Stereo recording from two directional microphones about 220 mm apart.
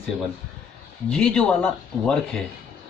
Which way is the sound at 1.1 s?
5° left (ahead or behind).